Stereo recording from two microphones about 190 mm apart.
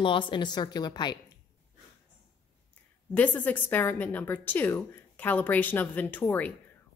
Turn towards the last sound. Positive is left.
turn(degrees=10)  # may be behind; listen again after turning